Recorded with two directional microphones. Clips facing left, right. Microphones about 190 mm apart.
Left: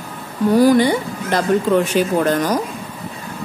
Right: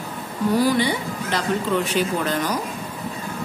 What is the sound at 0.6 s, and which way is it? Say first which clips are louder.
A woman's voice: left 7 dB; 45° left (ahead or behind).